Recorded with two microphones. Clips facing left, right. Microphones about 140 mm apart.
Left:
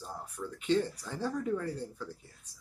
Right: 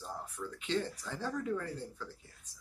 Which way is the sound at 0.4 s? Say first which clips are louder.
Left 6 dB; 15° left (ahead or behind).